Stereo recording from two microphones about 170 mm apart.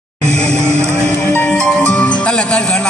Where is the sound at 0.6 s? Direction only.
15° right (ahead or behind).